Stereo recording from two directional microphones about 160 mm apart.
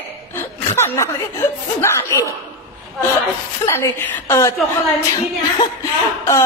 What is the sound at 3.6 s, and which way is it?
Speech, 15° left (ahead or behind).